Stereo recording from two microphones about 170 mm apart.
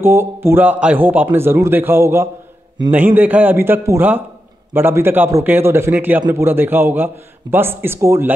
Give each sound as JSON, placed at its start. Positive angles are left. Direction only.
{"t": 0.0, "sound": "a man's voice", "side_deg": -15}